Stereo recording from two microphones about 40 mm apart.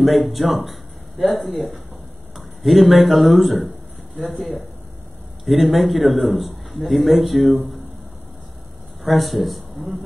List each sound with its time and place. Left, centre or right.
0.0 s a man's voice: centre
7.5 s speech: right
9.0 s speech: centre